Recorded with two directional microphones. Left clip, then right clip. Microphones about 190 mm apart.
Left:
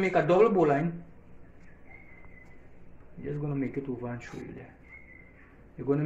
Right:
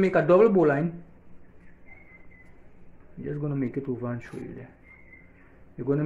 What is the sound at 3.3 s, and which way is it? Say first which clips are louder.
Speech: right 3 dB; 65° right (ahead or behind).